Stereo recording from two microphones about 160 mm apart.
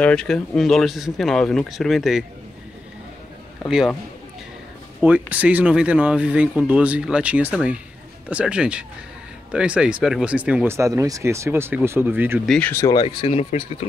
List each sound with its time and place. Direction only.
0.0 s speech: 5° left (ahead or behind)
3.6 s speech: 5° right (ahead or behind)
5.0 s speech: 10° right (ahead or behind)
12.4 s speech: 5° left (ahead or behind)
12.7 s speech: 20° left (ahead or behind)
13.0 s speech: 35° left (ahead or behind)